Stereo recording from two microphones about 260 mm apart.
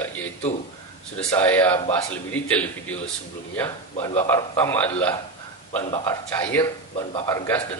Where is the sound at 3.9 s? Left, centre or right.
Left.